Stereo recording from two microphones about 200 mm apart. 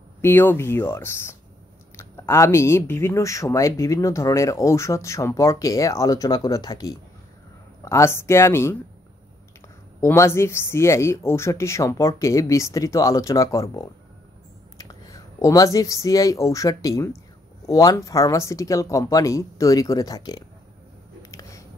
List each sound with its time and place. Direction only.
0.2 s speech: 10° left (ahead or behind)
9.9 s speech: 15° left (ahead or behind)
21.2 s a sound: 15° left (ahead or behind)